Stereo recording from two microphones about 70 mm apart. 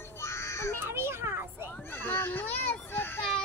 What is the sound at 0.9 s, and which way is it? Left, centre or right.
Speech, right.